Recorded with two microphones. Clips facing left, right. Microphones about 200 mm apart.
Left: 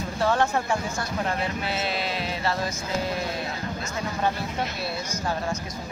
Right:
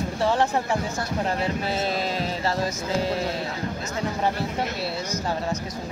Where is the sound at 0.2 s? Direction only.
30° right (ahead or behind).